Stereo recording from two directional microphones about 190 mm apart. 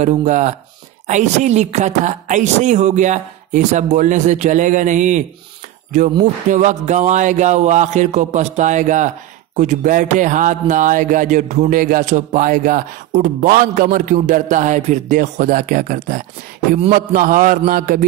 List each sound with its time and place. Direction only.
0.0 s a woman's voice: 40° right (ahead or behind)
6.5 s a woman's voice: 40° right (ahead or behind)